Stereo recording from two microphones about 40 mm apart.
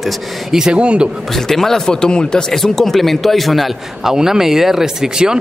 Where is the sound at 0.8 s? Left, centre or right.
Right.